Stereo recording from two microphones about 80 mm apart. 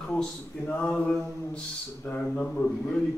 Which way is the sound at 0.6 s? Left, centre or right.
Centre.